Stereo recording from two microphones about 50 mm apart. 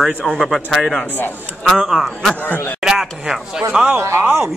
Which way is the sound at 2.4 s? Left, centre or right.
Left.